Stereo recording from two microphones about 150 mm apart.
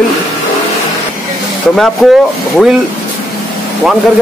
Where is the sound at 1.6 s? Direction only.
5° left (ahead or behind).